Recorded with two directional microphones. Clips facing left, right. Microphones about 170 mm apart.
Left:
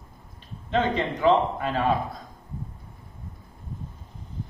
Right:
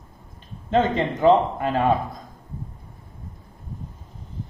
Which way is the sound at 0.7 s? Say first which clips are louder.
Right 4 dB; 45° right (ahead or behind).